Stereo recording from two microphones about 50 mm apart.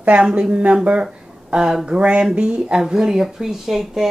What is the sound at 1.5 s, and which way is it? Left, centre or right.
Speech, centre.